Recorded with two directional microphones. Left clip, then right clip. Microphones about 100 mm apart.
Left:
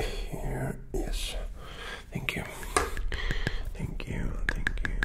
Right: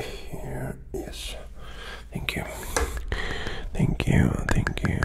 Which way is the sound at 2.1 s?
40° right (ahead or behind).